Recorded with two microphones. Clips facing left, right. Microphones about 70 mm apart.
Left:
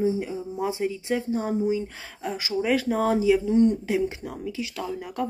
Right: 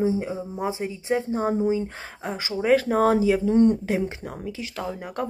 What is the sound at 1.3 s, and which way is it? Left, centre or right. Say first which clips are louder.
Speech: right 2 dB; right.